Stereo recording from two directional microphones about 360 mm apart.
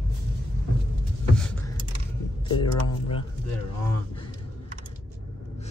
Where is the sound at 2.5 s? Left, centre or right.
Centre.